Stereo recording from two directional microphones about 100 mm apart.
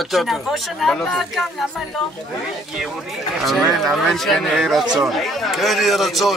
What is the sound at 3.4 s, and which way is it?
A man's voice, centre (ahead or behind).